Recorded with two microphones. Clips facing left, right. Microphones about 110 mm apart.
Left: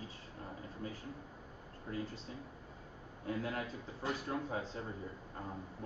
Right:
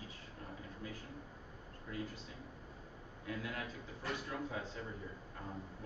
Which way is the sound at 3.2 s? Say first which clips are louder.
Left 4 dB; 35° left (ahead or behind).